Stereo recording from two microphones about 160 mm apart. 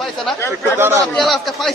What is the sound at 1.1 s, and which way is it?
Speech, centre (ahead or behind).